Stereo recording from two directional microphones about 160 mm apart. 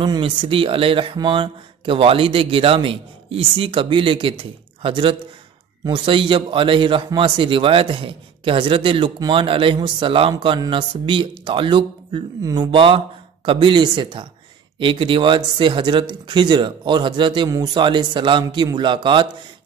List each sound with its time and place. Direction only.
0.0 s speech: 30° right (ahead or behind)